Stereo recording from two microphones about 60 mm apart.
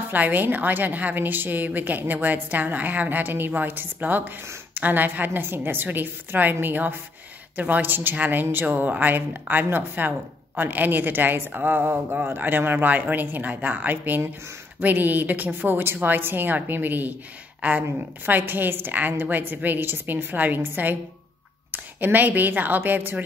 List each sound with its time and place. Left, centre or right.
0.1 s a woman's voice: right